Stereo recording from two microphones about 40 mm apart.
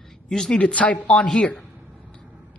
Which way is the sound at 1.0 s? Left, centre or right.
Left.